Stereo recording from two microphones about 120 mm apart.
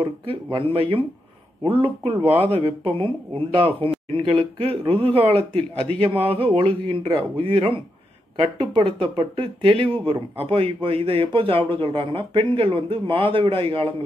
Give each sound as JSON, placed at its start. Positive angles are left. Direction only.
{"t": 0.0, "sound": "speech", "side_deg": -45}